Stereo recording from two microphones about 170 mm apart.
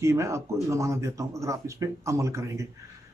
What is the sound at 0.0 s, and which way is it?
Speech, 15° right (ahead or behind).